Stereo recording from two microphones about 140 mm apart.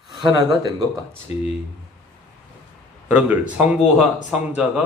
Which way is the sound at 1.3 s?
45° left (ahead or behind).